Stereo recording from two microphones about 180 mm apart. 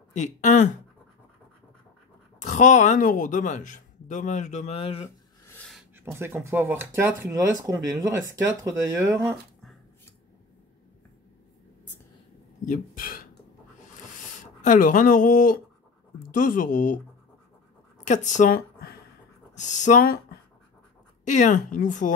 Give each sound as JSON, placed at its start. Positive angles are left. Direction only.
{"t": 0.1, "sound": "speech", "side_deg": 40}
{"t": 2.4, "sound": "speech", "side_deg": 40}
{"t": 5.9, "sound": "speech", "side_deg": -15}
{"t": 12.6, "sound": "a sound", "side_deg": 50}
{"t": 14.6, "sound": "speech", "side_deg": 45}
{"t": 18.0, "sound": "speech", "side_deg": 40}
{"t": 19.5, "sound": "speech", "side_deg": 40}
{"t": 21.2, "sound": "speech", "side_deg": 45}